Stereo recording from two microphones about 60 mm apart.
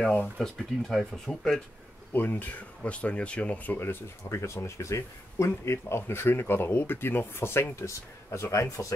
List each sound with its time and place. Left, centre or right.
0.4 s speech: centre
2.1 s speech: left